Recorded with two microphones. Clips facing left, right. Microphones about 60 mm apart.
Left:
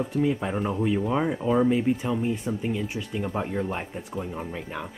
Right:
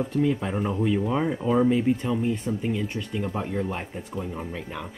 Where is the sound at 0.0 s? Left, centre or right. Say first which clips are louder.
Right 1 dB; centre.